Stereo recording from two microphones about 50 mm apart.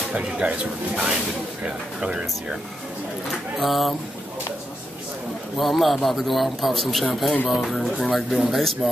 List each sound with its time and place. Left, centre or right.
0.1 s speech: right
3.5 s a man's voice: centre
5.6 s a man's voice: centre